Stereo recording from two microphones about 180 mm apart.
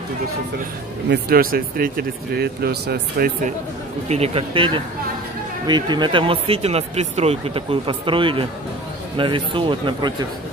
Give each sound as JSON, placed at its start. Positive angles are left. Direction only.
{"t": 1.1, "sound": "speech", "side_deg": -55}
{"t": 4.1, "sound": "speech", "side_deg": -35}